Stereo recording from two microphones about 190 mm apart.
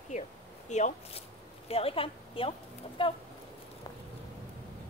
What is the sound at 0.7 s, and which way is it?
A woman's voice, 40° left (ahead or behind).